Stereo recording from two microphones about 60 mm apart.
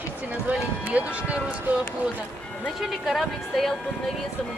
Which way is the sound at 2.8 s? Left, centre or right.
Centre.